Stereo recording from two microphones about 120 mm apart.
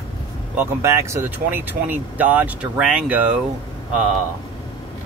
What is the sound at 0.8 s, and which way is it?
Speech, 20° right (ahead or behind).